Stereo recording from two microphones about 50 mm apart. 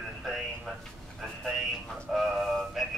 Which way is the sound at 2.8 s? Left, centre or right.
Centre.